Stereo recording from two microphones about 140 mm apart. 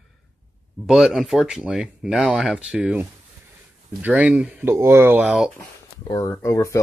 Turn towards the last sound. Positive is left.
turn(degrees=20)  # may be behind; listen again after turning